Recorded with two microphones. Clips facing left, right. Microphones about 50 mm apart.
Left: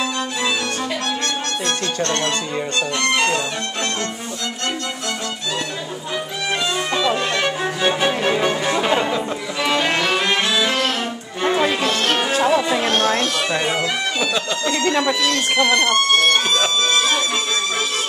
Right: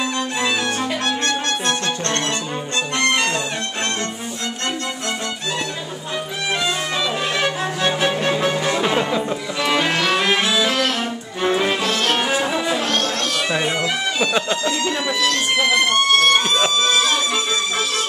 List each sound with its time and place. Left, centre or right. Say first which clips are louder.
1.0 s music: right 2 dB; right
6.6 s music: left 4 dB; centre
11.9 s music: even; centre
13.3 s bagpipes: even; centre
15.0 s violin: left 1 dB; centre